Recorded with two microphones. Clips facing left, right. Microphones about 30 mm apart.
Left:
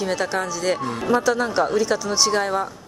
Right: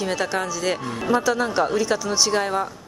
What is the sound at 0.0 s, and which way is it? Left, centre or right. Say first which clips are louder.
Speech: left 1 dB; centre.